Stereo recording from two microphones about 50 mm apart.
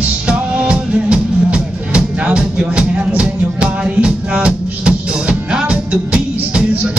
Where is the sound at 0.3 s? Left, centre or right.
Right.